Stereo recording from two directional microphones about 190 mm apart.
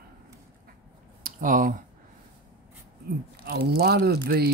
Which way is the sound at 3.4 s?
55° right (ahead or behind).